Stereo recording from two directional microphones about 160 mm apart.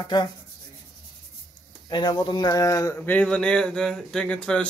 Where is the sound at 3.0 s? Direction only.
10° left (ahead or behind).